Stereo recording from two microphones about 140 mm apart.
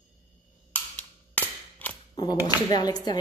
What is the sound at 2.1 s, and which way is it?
Speech, 30° left (ahead or behind).